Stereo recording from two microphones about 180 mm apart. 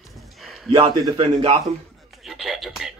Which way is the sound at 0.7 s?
30° right (ahead or behind).